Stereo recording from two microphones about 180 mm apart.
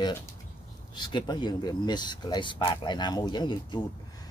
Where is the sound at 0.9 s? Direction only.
25° left (ahead or behind).